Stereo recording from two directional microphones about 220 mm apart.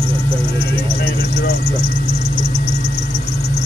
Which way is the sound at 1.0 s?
45° left (ahead or behind).